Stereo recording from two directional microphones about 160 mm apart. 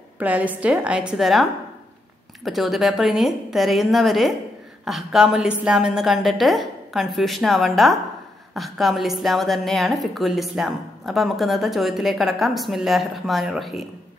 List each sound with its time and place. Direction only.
0.2 s a woman's voice: 10° right (ahead or behind)